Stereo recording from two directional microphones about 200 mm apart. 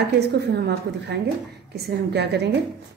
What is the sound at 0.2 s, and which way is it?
A woman's voice, 55° right (ahead or behind).